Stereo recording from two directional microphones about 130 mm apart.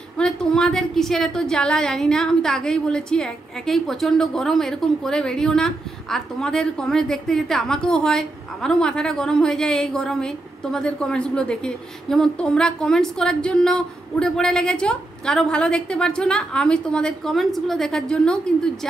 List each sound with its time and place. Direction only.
0.2 s a woman's voice: 5° left (ahead or behind)